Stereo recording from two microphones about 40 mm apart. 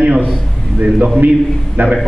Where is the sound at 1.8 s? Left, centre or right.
Right.